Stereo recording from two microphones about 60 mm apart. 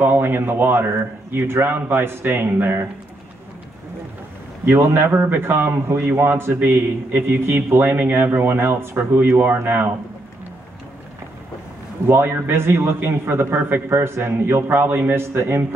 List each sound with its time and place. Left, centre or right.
0.0 s a man's voice: right
4.6 s a man's voice: right
12.1 s a man's voice: right
15.3 s a man's voice: right